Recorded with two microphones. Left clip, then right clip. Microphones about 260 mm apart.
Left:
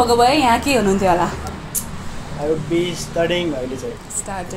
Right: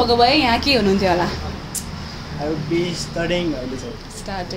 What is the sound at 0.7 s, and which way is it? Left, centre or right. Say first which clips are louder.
Speech: left 1 dB; centre.